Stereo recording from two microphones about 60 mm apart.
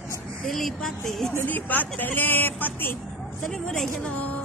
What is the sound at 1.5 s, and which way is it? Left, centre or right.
Speech, left.